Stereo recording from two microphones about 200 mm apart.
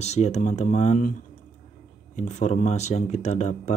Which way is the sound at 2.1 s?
35° left (ahead or behind).